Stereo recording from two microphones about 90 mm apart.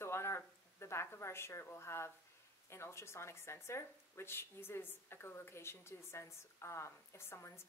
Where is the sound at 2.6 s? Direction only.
30° left (ahead or behind).